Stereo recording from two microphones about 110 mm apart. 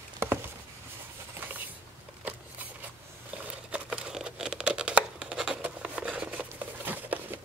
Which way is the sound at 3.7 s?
10° right (ahead or behind).